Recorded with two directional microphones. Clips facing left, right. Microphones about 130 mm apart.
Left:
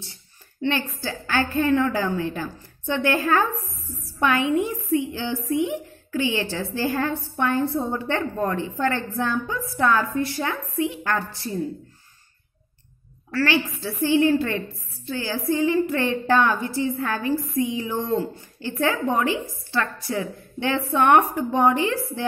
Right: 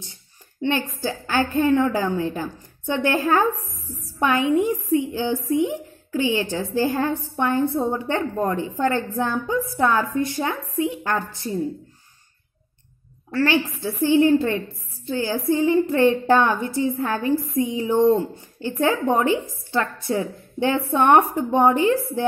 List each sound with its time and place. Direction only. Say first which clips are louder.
0.0 s a woman's voice: even; 20° right (ahead or behind)
13.3 s a woman's voice: right 2 dB; 20° right (ahead or behind)